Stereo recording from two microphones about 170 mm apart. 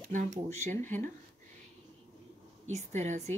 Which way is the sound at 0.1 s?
45° right (ahead or behind).